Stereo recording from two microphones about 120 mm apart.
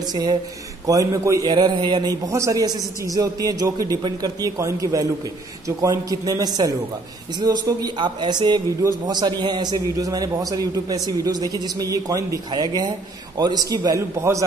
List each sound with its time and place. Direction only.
0.0 s a man's voice: 35° right (ahead or behind)